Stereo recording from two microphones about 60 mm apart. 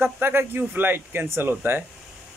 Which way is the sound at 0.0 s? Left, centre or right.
Right.